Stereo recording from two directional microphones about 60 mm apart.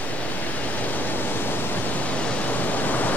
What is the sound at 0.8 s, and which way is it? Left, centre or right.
Pink noise, left.